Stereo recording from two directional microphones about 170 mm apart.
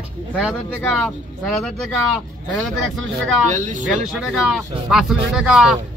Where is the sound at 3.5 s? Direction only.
45° right (ahead or behind).